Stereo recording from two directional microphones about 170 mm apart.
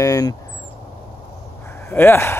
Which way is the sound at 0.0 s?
20° left (ahead or behind).